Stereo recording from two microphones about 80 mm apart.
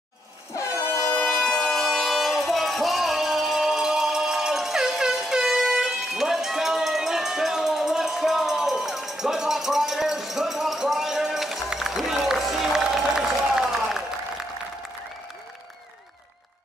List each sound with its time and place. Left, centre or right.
0.7 s air horn: left
1.3 s music: centre